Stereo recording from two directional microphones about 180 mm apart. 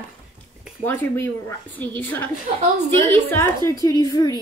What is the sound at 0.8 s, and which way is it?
A woman's voice, 10° left (ahead or behind).